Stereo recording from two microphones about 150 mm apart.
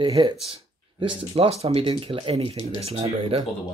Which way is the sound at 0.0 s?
35° right (ahead or behind).